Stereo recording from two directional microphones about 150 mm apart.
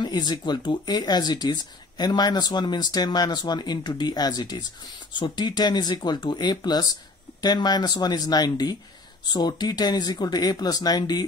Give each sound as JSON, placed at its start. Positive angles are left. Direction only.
{"t": 0.0, "sound": "speech", "side_deg": 30}